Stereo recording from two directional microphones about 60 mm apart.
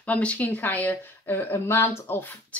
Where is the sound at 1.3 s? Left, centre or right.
Left.